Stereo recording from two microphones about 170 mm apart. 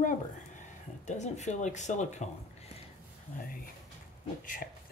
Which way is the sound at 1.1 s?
45° left (ahead or behind).